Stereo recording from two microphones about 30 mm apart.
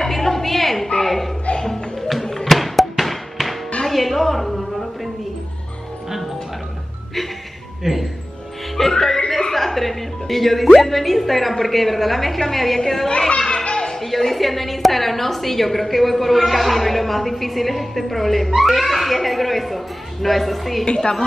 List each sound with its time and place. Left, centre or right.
0.0 s a sound: centre
1.6 s music: left
2.0 s music: centre
3.8 s a sound: centre
6.0 s music: centre
7.8 s music: centre
8.8 s music: centre
11.6 s a woman's voice: centre
13.3 s children playing: left
13.7 s music: left
13.9 s a woman's voice: centre
20.8 s a woman's voice: left